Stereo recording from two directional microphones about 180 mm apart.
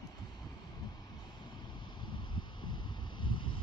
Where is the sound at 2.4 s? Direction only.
25° left (ahead or behind).